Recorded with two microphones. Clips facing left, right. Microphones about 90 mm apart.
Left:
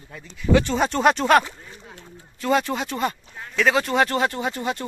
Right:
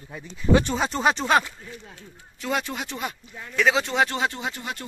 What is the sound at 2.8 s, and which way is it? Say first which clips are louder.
Speech: left 7 dB; 10° right (ahead or behind).